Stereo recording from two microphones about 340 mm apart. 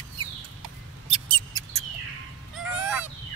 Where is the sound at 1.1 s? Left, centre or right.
Centre.